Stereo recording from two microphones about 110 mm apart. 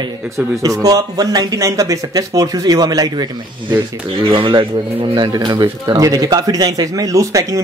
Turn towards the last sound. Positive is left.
turn(degrees=-30)  # may be behind; listen again after turning